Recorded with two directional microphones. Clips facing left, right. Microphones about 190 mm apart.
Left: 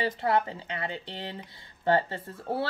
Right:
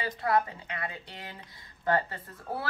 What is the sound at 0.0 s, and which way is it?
Speech, 30° left (ahead or behind).